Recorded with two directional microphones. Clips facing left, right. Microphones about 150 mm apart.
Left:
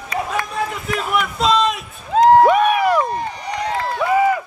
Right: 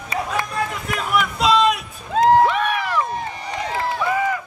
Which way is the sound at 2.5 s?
15° left (ahead or behind).